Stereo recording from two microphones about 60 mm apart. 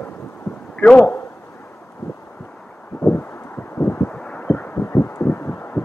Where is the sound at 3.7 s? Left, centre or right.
Left.